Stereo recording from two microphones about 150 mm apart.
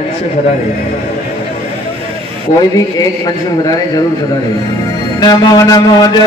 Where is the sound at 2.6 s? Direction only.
25° left (ahead or behind).